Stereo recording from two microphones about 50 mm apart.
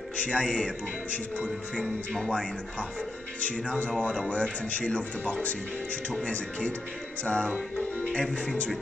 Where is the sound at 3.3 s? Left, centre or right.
Left.